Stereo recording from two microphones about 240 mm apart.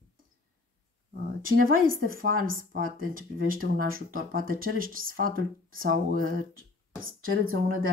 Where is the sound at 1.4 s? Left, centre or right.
Right.